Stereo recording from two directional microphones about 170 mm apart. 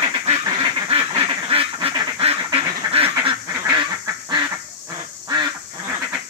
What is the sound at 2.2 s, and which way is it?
Duck, 35° right (ahead or behind).